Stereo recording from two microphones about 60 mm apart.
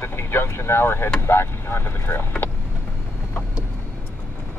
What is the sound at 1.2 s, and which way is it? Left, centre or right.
Speech, left.